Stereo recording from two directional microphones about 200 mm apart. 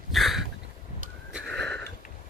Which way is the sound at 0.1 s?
Centre (ahead or behind).